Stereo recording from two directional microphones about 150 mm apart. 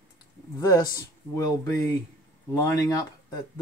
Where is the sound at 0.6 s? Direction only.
25° left (ahead or behind).